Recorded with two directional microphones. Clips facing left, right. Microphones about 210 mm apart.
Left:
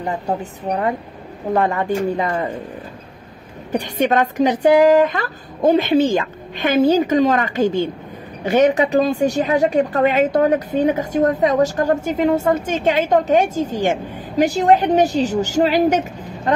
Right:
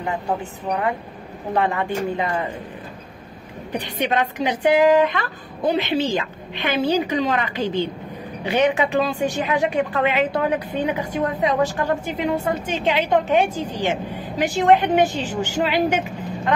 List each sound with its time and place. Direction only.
0.0 s a woman's voice: 40° left (ahead or behind)
3.7 s a woman's voice: 45° left (ahead or behind)